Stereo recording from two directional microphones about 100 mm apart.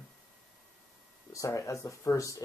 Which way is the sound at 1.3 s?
30° left (ahead or behind).